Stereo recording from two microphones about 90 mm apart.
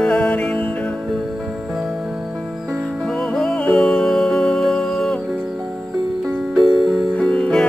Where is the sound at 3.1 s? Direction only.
10° left (ahead or behind).